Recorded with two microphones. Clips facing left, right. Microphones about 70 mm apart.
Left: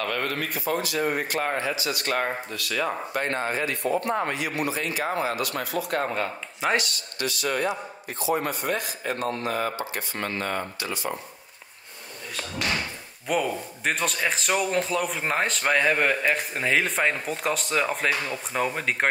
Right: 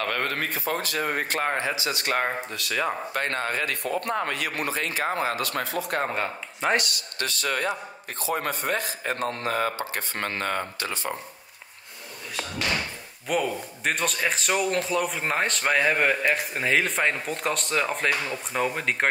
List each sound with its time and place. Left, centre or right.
0.0 s speech: right
1.2 s a man's voice: right
1.6 s speech: right
3.1 s speech: right
6.6 s a man's voice: centre
7.4 s speech: right
10.9 s a man's voice: right
13.3 s a man's voice: centre